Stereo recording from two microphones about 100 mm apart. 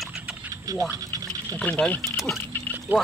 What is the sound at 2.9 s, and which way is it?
Speech, 20° right (ahead or behind).